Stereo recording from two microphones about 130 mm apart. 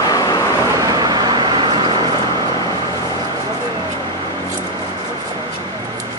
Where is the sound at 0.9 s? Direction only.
30° right (ahead or behind).